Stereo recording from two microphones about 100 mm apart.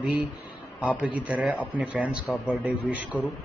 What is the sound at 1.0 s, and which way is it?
A man's voice, 5° right (ahead or behind).